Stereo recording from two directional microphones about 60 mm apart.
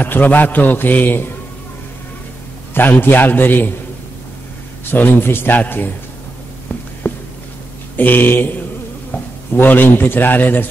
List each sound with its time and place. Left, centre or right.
0.0 s a man's voice: left
2.7 s a man's voice: left
4.9 s a man's voice: left
7.0 s a sound: left
7.9 s a man's voice: left